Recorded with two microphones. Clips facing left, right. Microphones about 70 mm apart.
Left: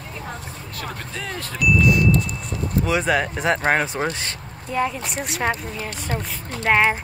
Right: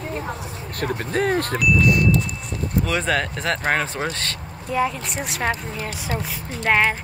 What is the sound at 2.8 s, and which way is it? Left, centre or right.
Speech, centre.